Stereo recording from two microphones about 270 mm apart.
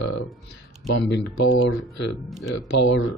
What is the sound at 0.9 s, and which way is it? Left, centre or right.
Speech, left.